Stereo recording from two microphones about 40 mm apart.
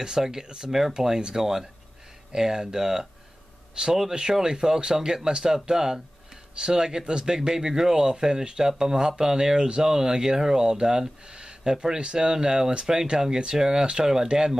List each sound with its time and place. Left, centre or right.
0.0 s speech: centre